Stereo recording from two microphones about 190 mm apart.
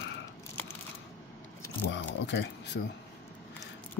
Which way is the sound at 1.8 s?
70° left (ahead or behind).